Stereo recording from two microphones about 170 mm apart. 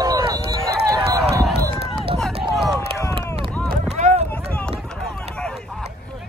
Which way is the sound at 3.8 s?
40° right (ahead or behind).